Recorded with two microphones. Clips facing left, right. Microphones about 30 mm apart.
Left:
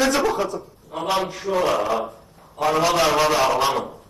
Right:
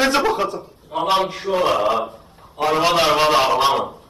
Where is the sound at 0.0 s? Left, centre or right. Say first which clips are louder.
Right 2 dB; right.